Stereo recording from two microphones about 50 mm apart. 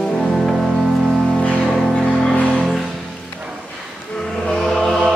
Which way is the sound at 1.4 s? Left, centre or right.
Centre.